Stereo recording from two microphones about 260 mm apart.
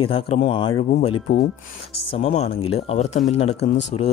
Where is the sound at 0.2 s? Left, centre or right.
Left.